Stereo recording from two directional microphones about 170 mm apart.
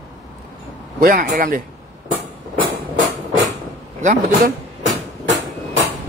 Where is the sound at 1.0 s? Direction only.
50° right (ahead or behind).